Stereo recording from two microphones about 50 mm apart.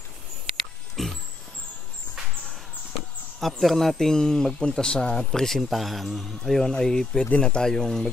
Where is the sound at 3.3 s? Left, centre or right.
Centre.